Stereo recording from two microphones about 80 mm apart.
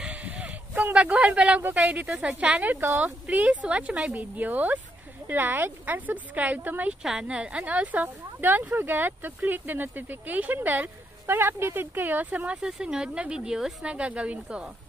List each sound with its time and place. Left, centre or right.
0.0 s a sound: centre
0.9 s speech: centre
7.0 s speech: centre